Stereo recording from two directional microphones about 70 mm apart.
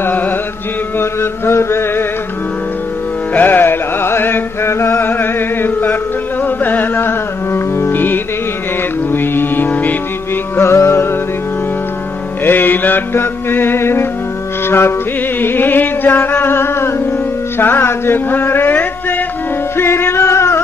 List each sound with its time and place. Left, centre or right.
0.9 s mantra: left
3.3 s music: left
10.6 s music: left
12.4 s music: left
19.8 s a sound: left